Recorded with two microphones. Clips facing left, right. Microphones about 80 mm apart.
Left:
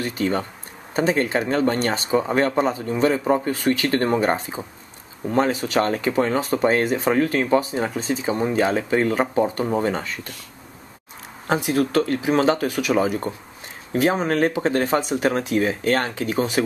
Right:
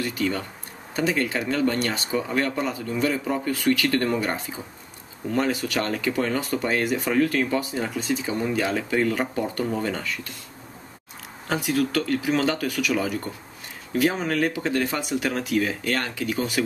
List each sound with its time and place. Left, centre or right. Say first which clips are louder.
0.0 s speech: left 3 dB; left
11.4 s speech: left 3 dB; left